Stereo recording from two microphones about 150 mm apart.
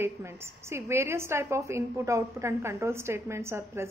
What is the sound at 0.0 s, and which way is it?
A woman's voice, 15° right (ahead or behind).